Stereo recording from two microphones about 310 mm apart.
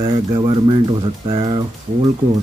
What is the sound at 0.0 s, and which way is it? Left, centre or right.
Speech, centre.